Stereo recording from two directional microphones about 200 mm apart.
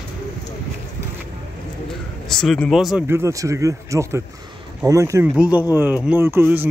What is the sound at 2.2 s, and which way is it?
Speech, 5° left (ahead or behind).